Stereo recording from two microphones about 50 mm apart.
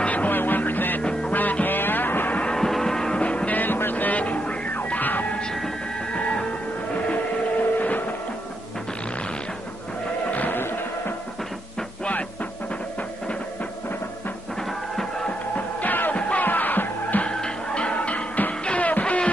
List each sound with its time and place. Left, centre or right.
0.0 s music: left
2.4 s vehicle: centre
3.2 s music: left
5.4 s music: centre
10.3 s music: left
12.0 s music: left
15.0 s music: centre
15.5 s music: left
16.2 s music: left
16.4 s music: left
17.2 s music: centre